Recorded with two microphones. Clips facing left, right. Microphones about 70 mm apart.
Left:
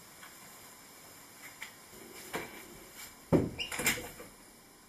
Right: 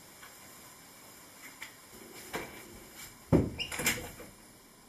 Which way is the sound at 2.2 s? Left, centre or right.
Centre.